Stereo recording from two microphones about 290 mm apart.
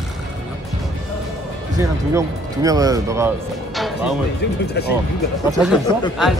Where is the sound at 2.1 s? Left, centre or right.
Centre.